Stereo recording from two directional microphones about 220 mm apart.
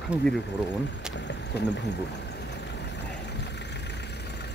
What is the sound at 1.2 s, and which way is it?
Speech, 55° left (ahead or behind).